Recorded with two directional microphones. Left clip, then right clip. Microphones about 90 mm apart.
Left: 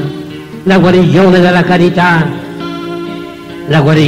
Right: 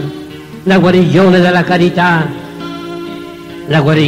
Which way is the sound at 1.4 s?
40° left (ahead or behind).